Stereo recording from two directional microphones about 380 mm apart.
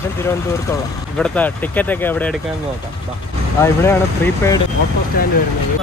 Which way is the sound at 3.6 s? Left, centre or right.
Centre.